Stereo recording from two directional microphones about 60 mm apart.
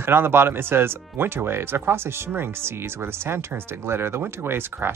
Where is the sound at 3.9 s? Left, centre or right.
Right.